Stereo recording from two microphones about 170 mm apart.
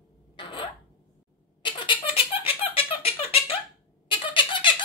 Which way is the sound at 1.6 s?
30° left (ahead or behind).